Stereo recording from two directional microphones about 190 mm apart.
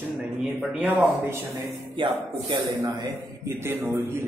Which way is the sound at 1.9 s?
25° right (ahead or behind).